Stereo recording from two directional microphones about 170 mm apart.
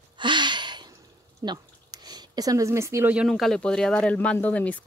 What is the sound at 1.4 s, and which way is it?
Speech, 25° right (ahead or behind).